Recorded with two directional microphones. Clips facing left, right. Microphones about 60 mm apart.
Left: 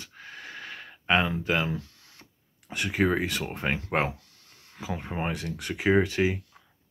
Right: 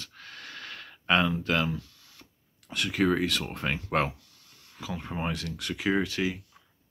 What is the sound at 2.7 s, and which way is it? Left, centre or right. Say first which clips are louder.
Speech: even; left.